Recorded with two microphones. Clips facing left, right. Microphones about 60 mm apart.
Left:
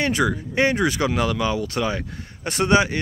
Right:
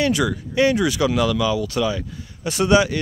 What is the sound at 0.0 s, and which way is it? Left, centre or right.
Speech, left.